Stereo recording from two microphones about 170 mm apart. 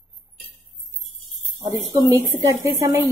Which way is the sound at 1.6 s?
15° right (ahead or behind).